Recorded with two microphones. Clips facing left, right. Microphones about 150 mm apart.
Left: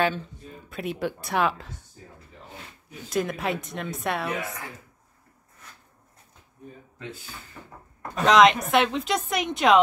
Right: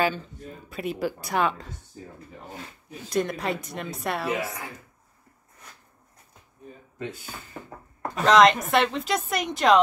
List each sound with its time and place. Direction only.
0.0 s speech: centre (ahead or behind)
3.1 s speech: centre (ahead or behind)
7.6 s a sound: 45° right (ahead or behind)
8.2 s speech: centre (ahead or behind)